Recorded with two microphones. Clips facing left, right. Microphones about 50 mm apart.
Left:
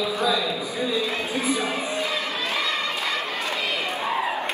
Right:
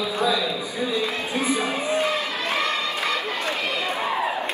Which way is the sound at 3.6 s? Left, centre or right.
Right.